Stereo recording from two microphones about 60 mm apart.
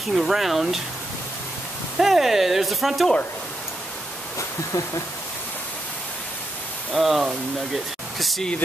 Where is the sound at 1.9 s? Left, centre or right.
Centre.